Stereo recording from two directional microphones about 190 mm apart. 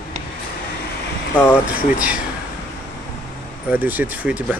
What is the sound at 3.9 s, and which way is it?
Speech, 10° right (ahead or behind).